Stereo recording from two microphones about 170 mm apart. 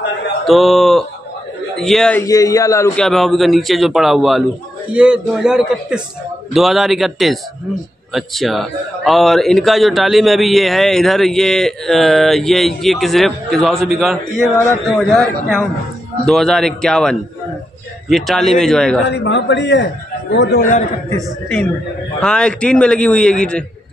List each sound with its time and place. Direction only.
0.5 s a man's voice: centre (ahead or behind)
2.2 s speech: 20° left (ahead or behind)
3.0 s a man's voice: centre (ahead or behind)
19.0 s a man's voice: 90° left
22.2 s a man's voice: 5° left (ahead or behind)